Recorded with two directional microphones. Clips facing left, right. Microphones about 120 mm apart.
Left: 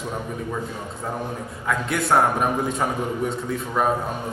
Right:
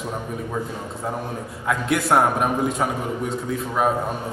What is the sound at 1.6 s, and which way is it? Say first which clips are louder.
A man's voice: right 2 dB; 5° right (ahead or behind).